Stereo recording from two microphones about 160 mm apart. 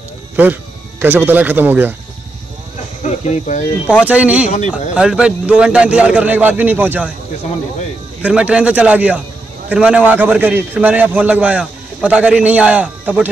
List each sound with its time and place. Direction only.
0.4 s speech: 10° right (ahead or behind)
3.0 s speech: 50° left (ahead or behind)
4.0 s a man's voice: 10° right (ahead or behind)
8.2 s a man's voice: 5° right (ahead or behind)